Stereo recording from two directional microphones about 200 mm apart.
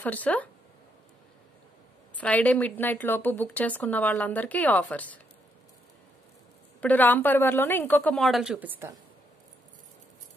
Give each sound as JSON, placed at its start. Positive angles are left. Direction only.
{"t": 0.0, "sound": "a woman's voice", "side_deg": 10}
{"t": 2.1, "sound": "a woman's voice", "side_deg": 5}
{"t": 6.8, "sound": "a woman's voice", "side_deg": 10}